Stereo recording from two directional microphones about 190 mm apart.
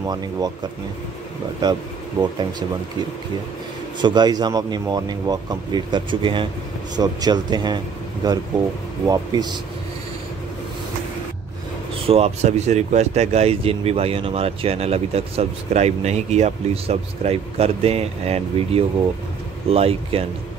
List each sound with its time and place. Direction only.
0.0 s speech: 20° right (ahead or behind)
1.6 s speech: 20° right (ahead or behind)
4.0 s speech: 20° right (ahead or behind)
12.1 s speech: 35° right (ahead or behind)